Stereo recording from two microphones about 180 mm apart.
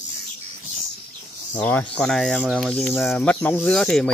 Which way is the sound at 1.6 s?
5° left (ahead or behind).